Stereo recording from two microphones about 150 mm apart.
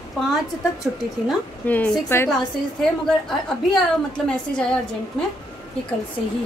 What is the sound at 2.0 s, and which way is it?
Speech, 15° left (ahead or behind).